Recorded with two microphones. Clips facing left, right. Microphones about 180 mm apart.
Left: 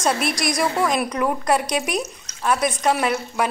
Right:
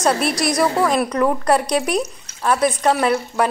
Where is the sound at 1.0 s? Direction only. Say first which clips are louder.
Right 4 dB; 10° left (ahead or behind).